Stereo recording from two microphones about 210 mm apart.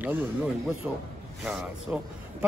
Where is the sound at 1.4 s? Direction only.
5° right (ahead or behind).